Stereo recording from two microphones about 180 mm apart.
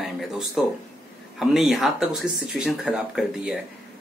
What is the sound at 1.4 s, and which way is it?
Speech, centre (ahead or behind).